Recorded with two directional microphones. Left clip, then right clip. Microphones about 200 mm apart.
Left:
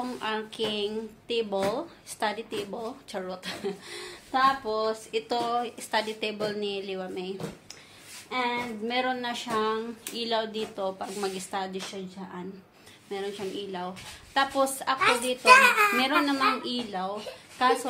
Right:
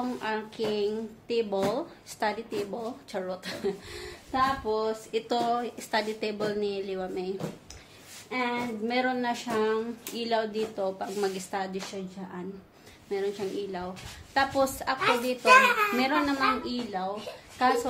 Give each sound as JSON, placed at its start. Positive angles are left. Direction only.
{"t": 0.0, "sound": "a woman's voice", "side_deg": 0}
{"t": 13.1, "sound": "a woman's voice", "side_deg": -5}
{"t": 15.4, "sound": "a child's voice", "side_deg": 30}
{"t": 16.0, "sound": "a woman's voice", "side_deg": 10}
{"t": 17.6, "sound": "a woman's voice", "side_deg": 0}